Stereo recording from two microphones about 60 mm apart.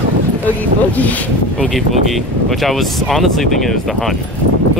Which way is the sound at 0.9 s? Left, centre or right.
Left.